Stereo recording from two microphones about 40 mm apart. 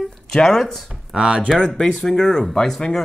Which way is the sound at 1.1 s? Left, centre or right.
Centre.